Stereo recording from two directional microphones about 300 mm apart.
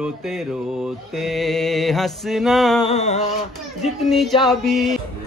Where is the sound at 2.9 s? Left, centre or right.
Left.